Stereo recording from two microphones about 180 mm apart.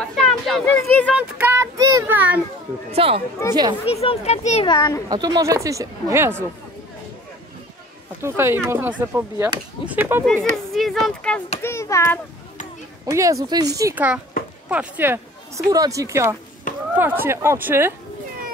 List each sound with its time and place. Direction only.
0.1 s a sound: 5° left (ahead or behind)
1.4 s child singing: 15° right (ahead or behind)
2.9 s speech: 30° right (ahead or behind)
3.9 s speech: 35° left (ahead or behind)
4.6 s speech: 25° left (ahead or behind)
5.1 s speech: 20° right (ahead or behind)
8.2 s speech: 15° right (ahead or behind)
10.2 s speech: centre (ahead or behind)
11.6 s a child's voice: 15° left (ahead or behind)
13.0 s speech: 20° right (ahead or behind)